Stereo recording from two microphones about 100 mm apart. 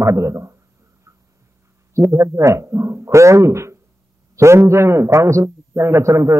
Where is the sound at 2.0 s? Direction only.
30° right (ahead or behind).